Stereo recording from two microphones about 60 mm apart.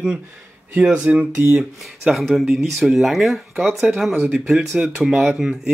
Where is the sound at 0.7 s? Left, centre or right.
Right.